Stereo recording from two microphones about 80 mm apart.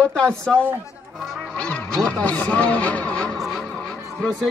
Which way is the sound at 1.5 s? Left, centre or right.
Centre.